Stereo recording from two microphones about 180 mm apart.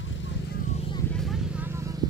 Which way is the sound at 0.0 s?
90° left.